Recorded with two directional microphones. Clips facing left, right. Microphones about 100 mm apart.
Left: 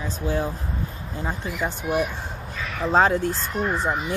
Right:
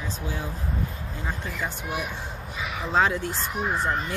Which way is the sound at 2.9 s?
40° left (ahead or behind).